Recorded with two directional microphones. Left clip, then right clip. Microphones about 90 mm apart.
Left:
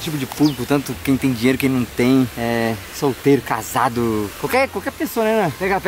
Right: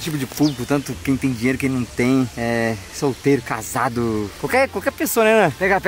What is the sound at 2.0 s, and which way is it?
Speech, 10° left (ahead or behind).